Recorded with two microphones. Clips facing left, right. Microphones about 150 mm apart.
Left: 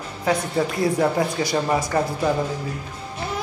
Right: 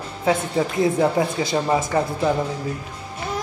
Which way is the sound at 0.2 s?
25° right (ahead or behind).